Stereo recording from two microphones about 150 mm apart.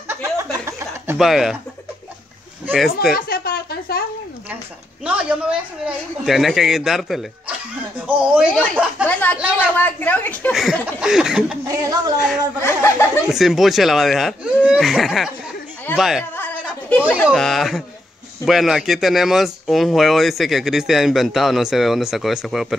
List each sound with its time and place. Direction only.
0.1 s a sound: 20° right (ahead or behind)
1.1 s a man's voice: centre (ahead or behind)
2.7 s a man's voice: centre (ahead or behind)
3.2 s a sound: 85° left
5.0 s a man's voice: 5° right (ahead or behind)
9.0 s speech: 10° left (ahead or behind)
10.5 s a man's voice: centre (ahead or behind)
11.6 s speech: 25° right (ahead or behind)
12.5 s speech: 15° left (ahead or behind)
13.3 s a man's voice: centre (ahead or behind)
16.3 s chuckle: 10° left (ahead or behind)
17.3 s a man's voice: centre (ahead or behind)